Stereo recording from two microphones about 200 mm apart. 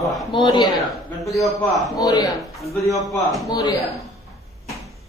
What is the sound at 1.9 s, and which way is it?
Speech, 20° left (ahead or behind).